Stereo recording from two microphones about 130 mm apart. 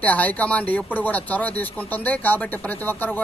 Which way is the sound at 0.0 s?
10° left (ahead or behind).